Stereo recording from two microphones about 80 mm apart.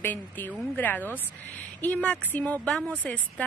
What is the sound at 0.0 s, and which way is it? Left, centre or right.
A woman's voice, left.